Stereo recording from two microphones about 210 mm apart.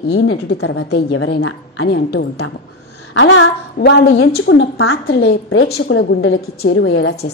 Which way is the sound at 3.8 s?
50° left (ahead or behind).